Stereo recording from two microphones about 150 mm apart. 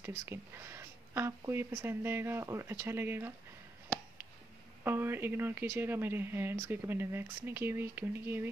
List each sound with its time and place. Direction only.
0.0 s speech: 15° right (ahead or behind)
4.8 s speech: 15° right (ahead or behind)